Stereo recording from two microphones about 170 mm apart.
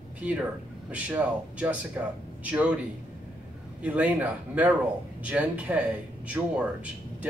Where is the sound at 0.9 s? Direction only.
10° right (ahead or behind).